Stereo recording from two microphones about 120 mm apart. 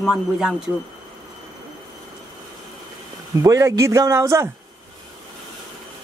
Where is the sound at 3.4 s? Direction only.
25° right (ahead or behind).